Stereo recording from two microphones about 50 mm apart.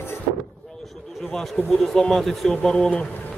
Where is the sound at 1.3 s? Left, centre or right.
Centre.